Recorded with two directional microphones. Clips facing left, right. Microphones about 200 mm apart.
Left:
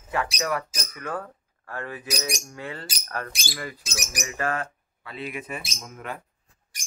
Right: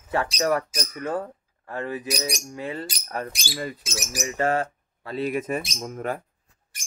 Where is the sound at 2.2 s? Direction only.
30° right (ahead or behind).